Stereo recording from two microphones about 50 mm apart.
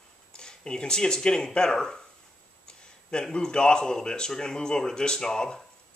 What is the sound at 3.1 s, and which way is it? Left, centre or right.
Speech, centre.